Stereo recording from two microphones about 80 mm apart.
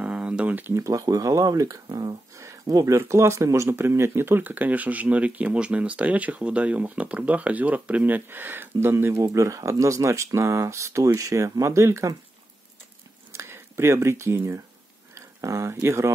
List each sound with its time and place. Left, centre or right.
0.0 s a sound: centre
0.7 s speech: right
3.0 s speech: right
13.3 s speech: right